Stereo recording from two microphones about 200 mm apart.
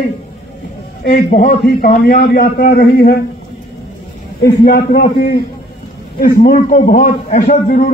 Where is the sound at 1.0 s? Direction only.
45° left (ahead or behind).